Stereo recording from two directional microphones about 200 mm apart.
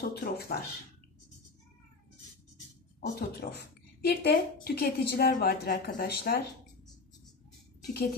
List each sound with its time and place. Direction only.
0.0 s a woman's voice: 50° left (ahead or behind)
3.2 s a woman's voice: 55° left (ahead or behind)
7.8 s speech: 50° left (ahead or behind)